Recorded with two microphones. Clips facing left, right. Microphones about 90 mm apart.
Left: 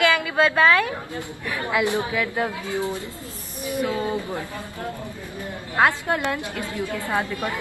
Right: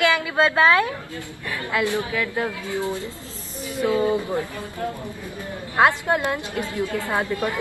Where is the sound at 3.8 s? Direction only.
20° right (ahead or behind).